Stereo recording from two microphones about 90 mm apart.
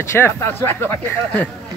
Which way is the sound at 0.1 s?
25° left (ahead or behind).